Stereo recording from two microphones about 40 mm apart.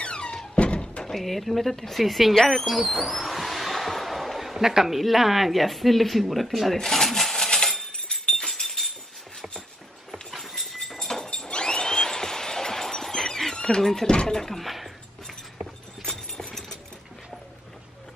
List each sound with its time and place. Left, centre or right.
0.0 s thunk: left
1.1 s speech: centre
2.3 s speech: centre
2.6 s a sound: centre
7.9 s chink: centre
8.5 s chink: centre
10.3 s clip-clop: centre
11.2 s chink: left
14.1 s speech: centre
14.6 s a sound: centre
16.3 s engine: centre